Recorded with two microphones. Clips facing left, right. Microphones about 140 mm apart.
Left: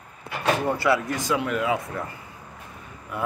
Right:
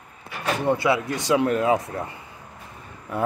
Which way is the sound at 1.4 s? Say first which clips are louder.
Right 4 dB; 35° right (ahead or behind).